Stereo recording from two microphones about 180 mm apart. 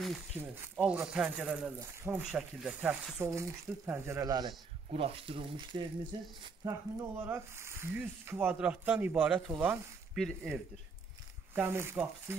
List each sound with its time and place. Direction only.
0.4 s speech: 10° right (ahead or behind)
4.9 s speech: 30° right (ahead or behind); by 10.6 s centre (ahead or behind)
11.5 s speech: 15° right (ahead or behind)